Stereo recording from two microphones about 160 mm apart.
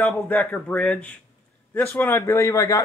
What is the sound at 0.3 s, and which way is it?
Speech, 10° left (ahead or behind).